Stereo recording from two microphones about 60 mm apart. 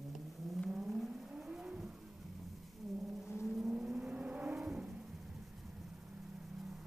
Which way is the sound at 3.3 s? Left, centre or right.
Centre.